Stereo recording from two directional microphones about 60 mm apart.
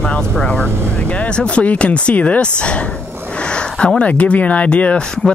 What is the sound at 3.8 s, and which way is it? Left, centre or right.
Speech, centre.